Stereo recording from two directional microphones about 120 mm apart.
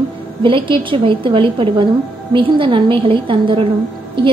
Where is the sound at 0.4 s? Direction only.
45° right (ahead or behind).